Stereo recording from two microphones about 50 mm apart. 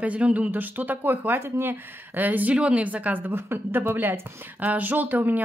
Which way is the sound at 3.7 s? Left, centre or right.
Right.